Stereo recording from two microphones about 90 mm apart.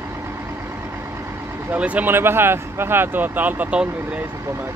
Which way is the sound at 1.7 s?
15° right (ahead or behind).